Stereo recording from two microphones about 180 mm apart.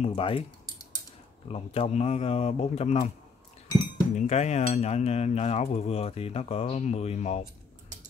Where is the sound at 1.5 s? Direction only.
35° left (ahead or behind).